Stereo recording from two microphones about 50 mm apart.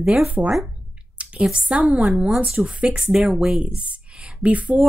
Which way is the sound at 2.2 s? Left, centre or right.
Centre.